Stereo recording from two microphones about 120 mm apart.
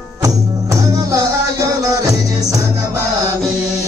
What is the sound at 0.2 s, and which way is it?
Music, 25° right (ahead or behind).